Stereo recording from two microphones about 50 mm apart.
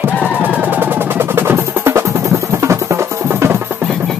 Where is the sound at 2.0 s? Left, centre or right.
Right.